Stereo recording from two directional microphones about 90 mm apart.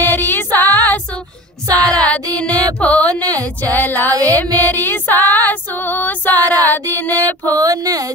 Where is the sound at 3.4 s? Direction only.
20° left (ahead or behind).